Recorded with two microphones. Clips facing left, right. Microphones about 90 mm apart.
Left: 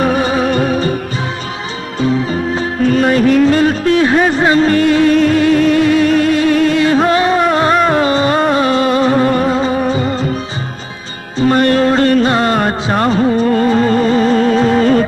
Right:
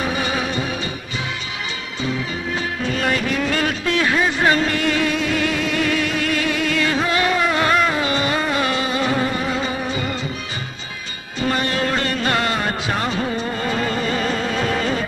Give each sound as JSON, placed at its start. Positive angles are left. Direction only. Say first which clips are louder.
{"t": 0.0, "sound": "music", "louder": "left 9 dB", "side_deg": 45}
{"t": 0.5, "sound": "music", "louder": "left 11 dB", "side_deg": 50}
{"t": 2.0, "sound": "music", "louder": "left 11 dB", "side_deg": 40}
{"t": 5.1, "sound": "music", "louder": "left 11 dB", "side_deg": 50}
{"t": 7.2, "sound": "a sound", "louder": "left 7 dB", "side_deg": 35}
{"t": 8.5, "sound": "music", "louder": "left 9 dB", "side_deg": 35}
{"t": 11.3, "sound": "music", "louder": "left 10 dB", "side_deg": 40}